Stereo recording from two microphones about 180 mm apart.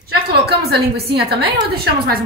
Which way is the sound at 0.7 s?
60° right (ahead or behind).